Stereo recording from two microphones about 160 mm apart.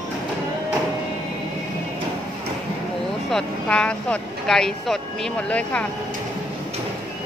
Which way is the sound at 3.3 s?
5° left (ahead or behind).